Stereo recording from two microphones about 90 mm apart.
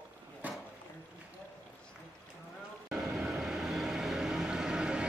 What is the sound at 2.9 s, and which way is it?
Vehicle, centre (ahead or behind).